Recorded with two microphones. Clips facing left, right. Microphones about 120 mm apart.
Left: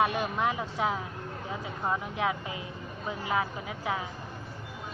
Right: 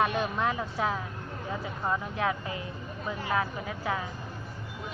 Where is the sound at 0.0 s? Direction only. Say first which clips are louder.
Even; 15° left (ahead or behind).